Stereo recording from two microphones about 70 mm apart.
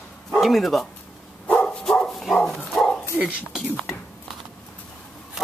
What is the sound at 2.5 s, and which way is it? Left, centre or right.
Bow-wow, centre.